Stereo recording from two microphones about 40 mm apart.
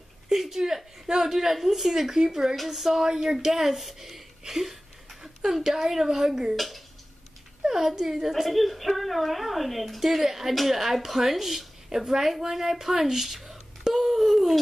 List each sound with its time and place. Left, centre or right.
0.3 s a woman's voice: centre
6.5 s a woman's voice: centre
7.6 s a woman's voice: centre